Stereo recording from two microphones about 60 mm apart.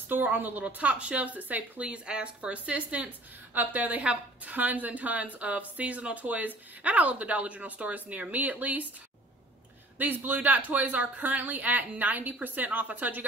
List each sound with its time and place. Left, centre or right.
0.1 s a woman's voice: right
9.9 s a woman's voice: right